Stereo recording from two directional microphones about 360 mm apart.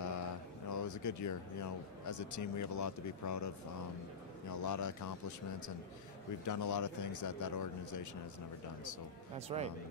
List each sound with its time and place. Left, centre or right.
0.0 s a man's voice: left
6.4 s a man's voice: left
9.5 s a man's voice: centre